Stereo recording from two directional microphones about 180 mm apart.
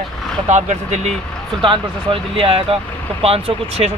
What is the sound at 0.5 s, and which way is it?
Speech, 40° right (ahead or behind).